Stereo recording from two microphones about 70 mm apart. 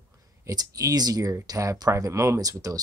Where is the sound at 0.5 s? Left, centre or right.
Right.